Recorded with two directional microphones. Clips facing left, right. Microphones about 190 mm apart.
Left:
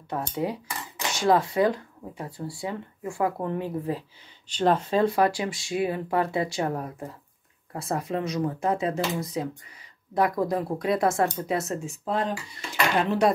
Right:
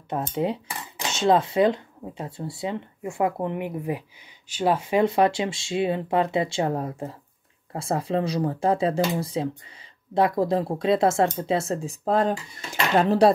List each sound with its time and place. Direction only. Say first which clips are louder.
0.1 s dishes: right 3 dB; 20° right (ahead or behind)
7.7 s speech: right 3 dB; 25° right (ahead or behind)
9.1 s dishes: right 3 dB; 30° right (ahead or behind); by 12.4 s 45° right (ahead or behind)
13.0 s speech: right 6 dB; 35° right (ahead or behind)